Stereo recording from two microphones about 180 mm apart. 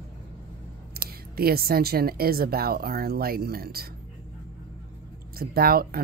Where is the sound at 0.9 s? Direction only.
60° right (ahead or behind).